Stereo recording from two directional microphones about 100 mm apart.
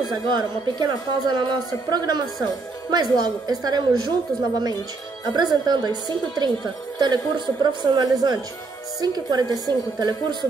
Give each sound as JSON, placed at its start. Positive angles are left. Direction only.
{"t": 0.1, "sound": "a woman's voice", "side_deg": -45}
{"t": 5.2, "sound": "a woman's voice", "side_deg": -45}